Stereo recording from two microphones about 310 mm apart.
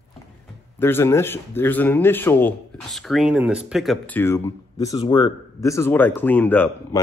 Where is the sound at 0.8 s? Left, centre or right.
Centre.